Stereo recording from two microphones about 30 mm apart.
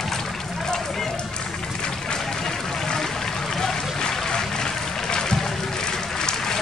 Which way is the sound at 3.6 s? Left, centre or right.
Left.